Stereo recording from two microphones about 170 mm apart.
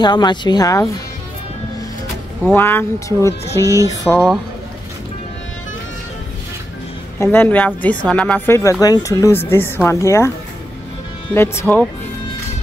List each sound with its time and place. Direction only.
0.0 s speech: 25° left (ahead or behind)
2.5 s speech: 15° left (ahead or behind)
7.2 s speech: 10° left (ahead or behind)
11.3 s speech: 15° left (ahead or behind)